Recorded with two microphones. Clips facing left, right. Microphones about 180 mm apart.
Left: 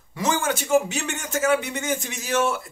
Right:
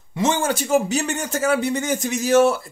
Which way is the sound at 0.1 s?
25° right (ahead or behind).